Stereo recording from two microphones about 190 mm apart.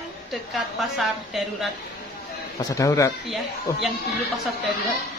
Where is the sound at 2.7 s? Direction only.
15° left (ahead or behind).